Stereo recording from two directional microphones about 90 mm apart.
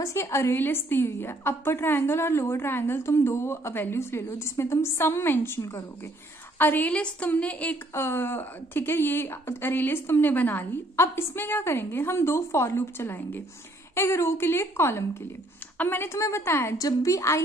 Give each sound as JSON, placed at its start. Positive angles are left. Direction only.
{"t": 0.0, "sound": "a woman's voice", "side_deg": 30}
{"t": 6.6, "sound": "a woman's voice", "side_deg": 20}
{"t": 7.9, "sound": "a woman's voice", "side_deg": 25}